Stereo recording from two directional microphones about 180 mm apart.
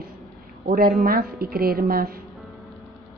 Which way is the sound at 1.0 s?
55° right (ahead or behind).